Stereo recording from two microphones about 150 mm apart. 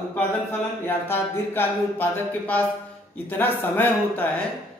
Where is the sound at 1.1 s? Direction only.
15° left (ahead or behind).